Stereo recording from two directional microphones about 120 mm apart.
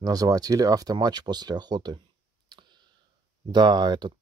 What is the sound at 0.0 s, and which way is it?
Speech, 30° right (ahead or behind).